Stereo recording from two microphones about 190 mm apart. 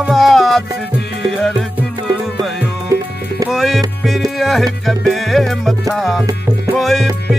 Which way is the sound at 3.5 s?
Centre (ahead or behind).